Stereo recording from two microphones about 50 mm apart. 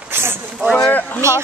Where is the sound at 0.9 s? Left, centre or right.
Left.